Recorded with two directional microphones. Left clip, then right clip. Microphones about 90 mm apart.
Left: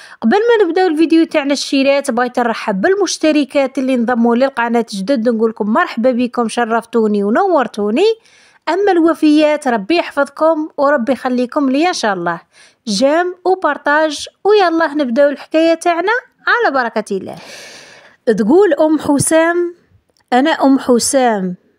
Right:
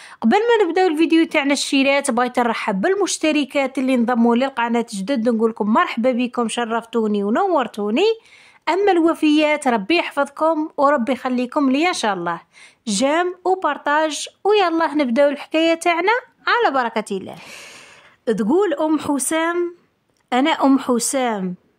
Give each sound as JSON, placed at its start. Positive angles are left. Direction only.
{"t": 0.2, "sound": "speech", "side_deg": 25}
{"t": 4.3, "sound": "speech", "side_deg": 35}
{"t": 20.2, "sound": "speech", "side_deg": 35}